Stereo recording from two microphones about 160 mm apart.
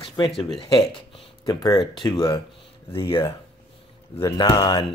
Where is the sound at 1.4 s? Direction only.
25° left (ahead or behind).